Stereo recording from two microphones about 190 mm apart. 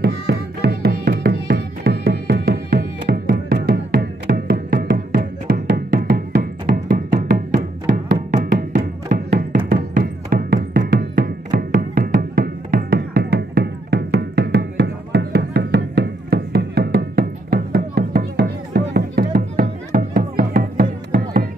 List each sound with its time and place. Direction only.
0.0 s music: 55° right (ahead or behind)
7.2 s music: 55° right (ahead or behind)
7.5 s music: 40° right (ahead or behind)